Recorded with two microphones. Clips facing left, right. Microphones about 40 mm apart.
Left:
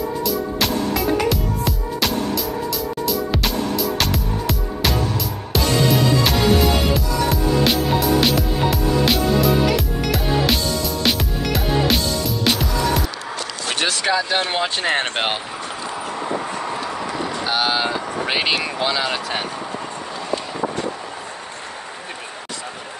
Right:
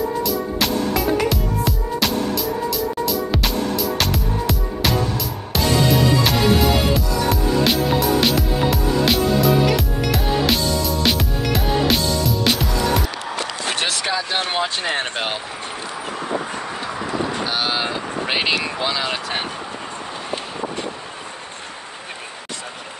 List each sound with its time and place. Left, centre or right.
0.2 s music: centre
14.0 s a sound: centre
14.6 s speech: left
17.5 s vehicle: centre
19.0 s speech: centre